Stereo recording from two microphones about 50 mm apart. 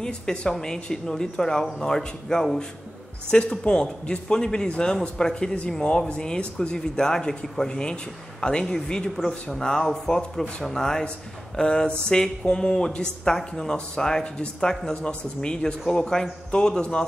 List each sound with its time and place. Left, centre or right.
0.0 s speech: centre